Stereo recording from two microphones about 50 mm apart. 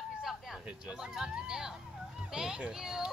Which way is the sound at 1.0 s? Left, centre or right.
Centre.